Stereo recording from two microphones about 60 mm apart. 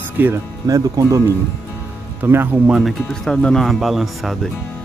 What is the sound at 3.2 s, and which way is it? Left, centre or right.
Speech, centre.